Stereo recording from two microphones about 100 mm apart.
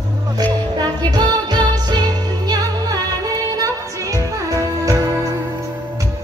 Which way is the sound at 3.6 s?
35° right (ahead or behind).